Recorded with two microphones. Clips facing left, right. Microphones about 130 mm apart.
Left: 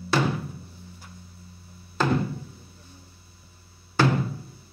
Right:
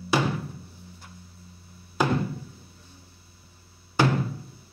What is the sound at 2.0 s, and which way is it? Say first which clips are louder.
Music: even; 15° right (ahead or behind).